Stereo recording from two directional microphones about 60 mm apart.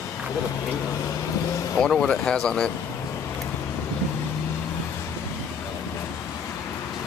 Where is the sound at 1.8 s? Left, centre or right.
Centre.